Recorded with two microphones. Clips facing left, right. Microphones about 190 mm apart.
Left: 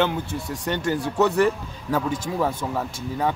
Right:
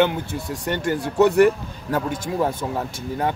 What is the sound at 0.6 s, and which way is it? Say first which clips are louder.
Speech: right 1 dB; 55° right (ahead or behind).